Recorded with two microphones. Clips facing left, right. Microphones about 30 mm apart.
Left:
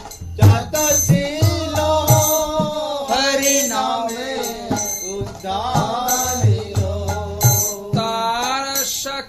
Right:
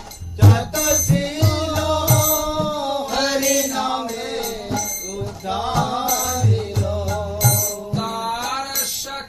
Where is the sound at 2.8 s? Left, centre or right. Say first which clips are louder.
Left 2 dB; left.